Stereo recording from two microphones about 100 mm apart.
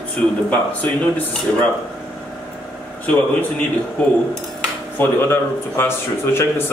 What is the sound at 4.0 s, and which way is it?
Speech, 10° left (ahead or behind).